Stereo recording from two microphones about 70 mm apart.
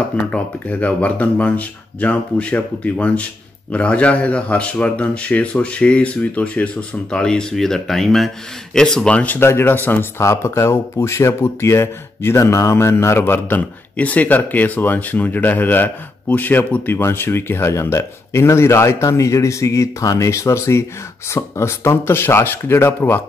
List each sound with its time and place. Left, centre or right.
0.3 s a man's voice: centre
9.1 s speech: left
9.4 s speech: left
10.2 s speech: left